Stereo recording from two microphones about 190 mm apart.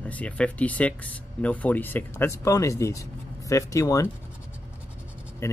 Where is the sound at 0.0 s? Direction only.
5° left (ahead or behind).